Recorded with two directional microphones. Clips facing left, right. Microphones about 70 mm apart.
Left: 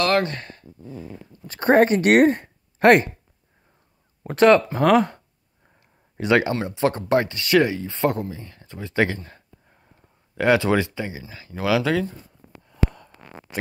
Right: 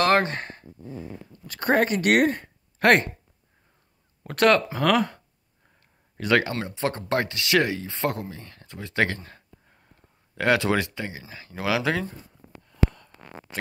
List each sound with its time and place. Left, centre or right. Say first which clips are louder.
0.0 s sigh: even; right
1.5 s speech: left 6 dB; left
4.2 s speech: left 5 dB; centre
7.2 s speech: left 4 dB; centre
12.6 s a sound: even; centre